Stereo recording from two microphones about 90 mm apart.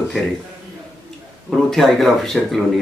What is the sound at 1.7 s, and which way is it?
Speech, centre (ahead or behind).